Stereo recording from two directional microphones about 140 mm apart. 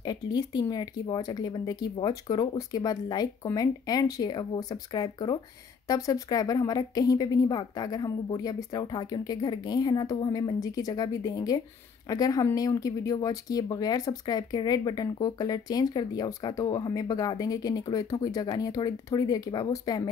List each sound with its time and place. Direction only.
0.0 s speech: 30° left (ahead or behind)